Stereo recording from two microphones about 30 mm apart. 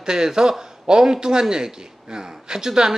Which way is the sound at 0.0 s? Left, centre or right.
Right.